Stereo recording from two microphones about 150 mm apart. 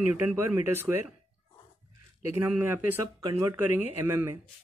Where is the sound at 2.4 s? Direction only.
15° right (ahead or behind).